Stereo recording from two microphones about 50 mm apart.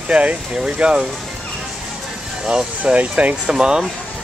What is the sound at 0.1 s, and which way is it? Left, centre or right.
Speech, right.